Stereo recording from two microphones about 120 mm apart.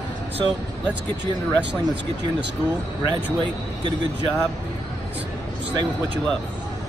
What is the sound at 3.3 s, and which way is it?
Speech, 40° right (ahead or behind).